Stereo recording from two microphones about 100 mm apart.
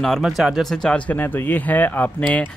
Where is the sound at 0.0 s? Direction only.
Centre (ahead or behind).